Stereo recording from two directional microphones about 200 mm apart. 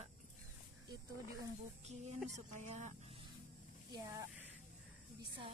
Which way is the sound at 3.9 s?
15° right (ahead or behind).